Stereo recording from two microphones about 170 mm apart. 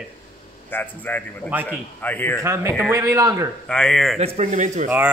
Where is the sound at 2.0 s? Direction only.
10° left (ahead or behind).